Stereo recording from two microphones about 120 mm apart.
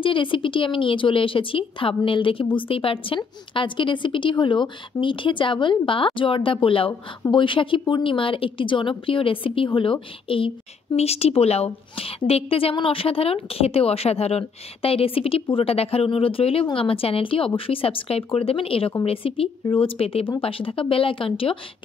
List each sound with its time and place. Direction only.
0.0 s a woman's voice: 45° left (ahead or behind)
11.0 s a woman's voice: 60° left (ahead or behind)